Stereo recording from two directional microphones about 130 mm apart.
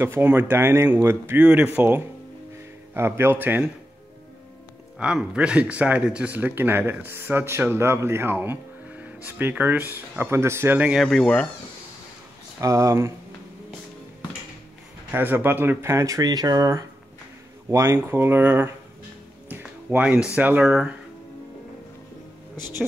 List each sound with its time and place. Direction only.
0.0 s speech: 15° right (ahead or behind)
4.9 s speech: 5° right (ahead or behind)
11.0 s speech: 5° left (ahead or behind)
12.5 s speech: 25° right (ahead or behind)
15.0 s speech: 15° right (ahead or behind)
19.5 s music: 15° right (ahead or behind)
20.3 s speech: 10° right (ahead or behind)